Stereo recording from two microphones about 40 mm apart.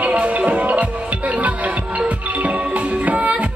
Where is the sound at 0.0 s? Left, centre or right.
Right.